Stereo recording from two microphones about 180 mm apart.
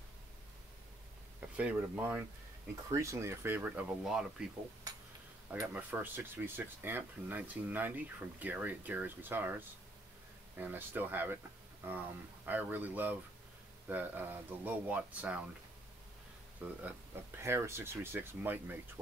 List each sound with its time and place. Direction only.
1.6 s speech: 10° right (ahead or behind)
4.9 s a sound: 20° right (ahead or behind)
5.5 s speech: 10° right (ahead or behind)
12.4 s speech: 10° right (ahead or behind)
16.6 s speech: 10° right (ahead or behind)